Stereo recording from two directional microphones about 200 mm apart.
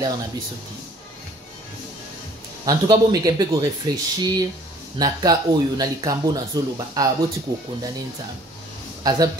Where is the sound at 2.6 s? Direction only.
20° right (ahead or behind).